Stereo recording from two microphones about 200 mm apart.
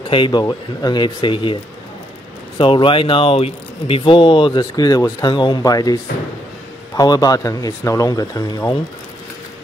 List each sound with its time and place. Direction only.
0.1 s speech: 25° left (ahead or behind)
2.6 s speech: 25° left (ahead or behind)
7.0 s speech: 20° left (ahead or behind)